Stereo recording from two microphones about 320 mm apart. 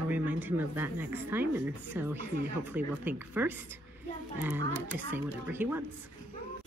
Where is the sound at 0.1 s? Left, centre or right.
Centre.